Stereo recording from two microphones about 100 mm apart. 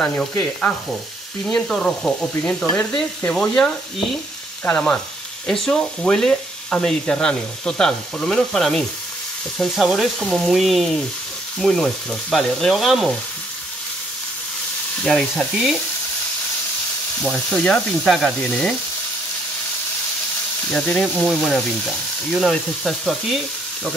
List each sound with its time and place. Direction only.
1.4 s frying: 5° left (ahead or behind)
9.6 s speech: centre (ahead or behind)
15.0 s speech: centre (ahead or behind)
17.2 s frying: 10° left (ahead or behind)
18.0 s speech: centre (ahead or behind)
18.5 s frying: 10° left (ahead or behind)
20.7 s speech: 5° left (ahead or behind)